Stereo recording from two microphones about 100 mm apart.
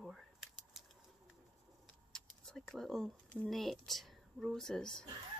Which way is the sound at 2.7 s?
5° left (ahead or behind).